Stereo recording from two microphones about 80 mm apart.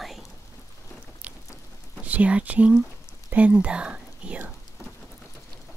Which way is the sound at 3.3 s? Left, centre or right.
Centre.